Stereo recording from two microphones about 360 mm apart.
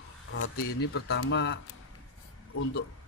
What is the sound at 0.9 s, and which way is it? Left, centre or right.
Speech, left.